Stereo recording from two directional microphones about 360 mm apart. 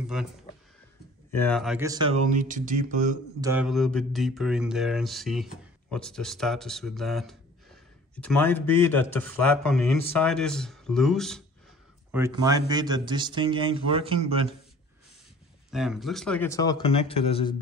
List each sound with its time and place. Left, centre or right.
0.0 s speech: centre
1.3 s a man's voice: centre; by 3.2 s right
3.3 s a man's voice: centre
15.7 s a man's voice: centre